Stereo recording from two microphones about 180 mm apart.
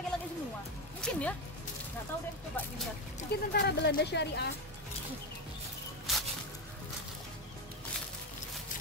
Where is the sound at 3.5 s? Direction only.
65° left (ahead or behind).